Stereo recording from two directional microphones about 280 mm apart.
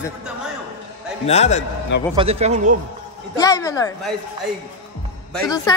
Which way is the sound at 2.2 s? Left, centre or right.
Right.